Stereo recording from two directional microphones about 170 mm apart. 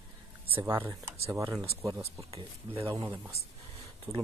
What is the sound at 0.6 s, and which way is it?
Speech, 15° right (ahead or behind).